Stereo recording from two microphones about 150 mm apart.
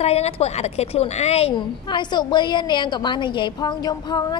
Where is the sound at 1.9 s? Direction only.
30° left (ahead or behind).